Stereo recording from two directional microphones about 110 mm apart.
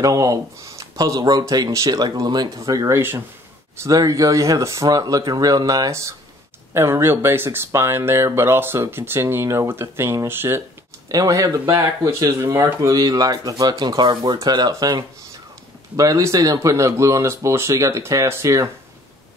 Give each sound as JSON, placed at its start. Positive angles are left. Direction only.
{"t": 0.0, "sound": "speech", "side_deg": -30}
{"t": 3.0, "sound": "speech", "side_deg": -20}
{"t": 3.8, "sound": "speech", "side_deg": -30}
{"t": 11.1, "sound": "speech", "side_deg": -30}